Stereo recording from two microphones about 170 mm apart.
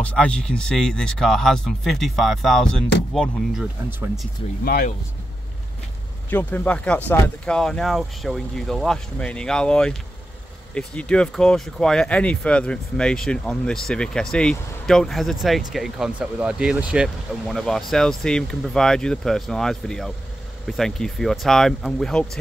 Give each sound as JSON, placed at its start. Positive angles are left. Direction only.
{"t": 0.0, "sound": "speech", "side_deg": 5}
{"t": 4.6, "sound": "speech", "side_deg": 60}
{"t": 6.3, "sound": "speech", "side_deg": 10}